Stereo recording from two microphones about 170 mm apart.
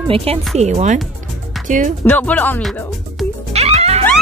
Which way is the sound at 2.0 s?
10° left (ahead or behind).